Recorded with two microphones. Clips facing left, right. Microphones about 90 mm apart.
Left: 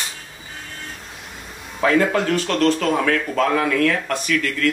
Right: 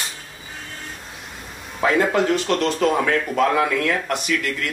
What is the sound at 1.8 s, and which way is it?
Speech, 20° right (ahead or behind).